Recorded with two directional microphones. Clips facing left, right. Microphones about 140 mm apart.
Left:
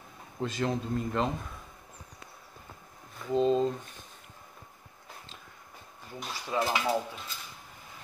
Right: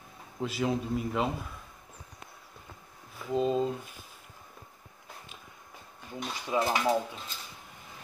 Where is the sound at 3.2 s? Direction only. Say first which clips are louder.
Left 2 dB; 5° right (ahead or behind).